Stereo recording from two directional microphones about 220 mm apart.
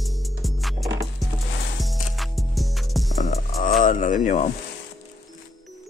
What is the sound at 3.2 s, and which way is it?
Music, 35° left (ahead or behind).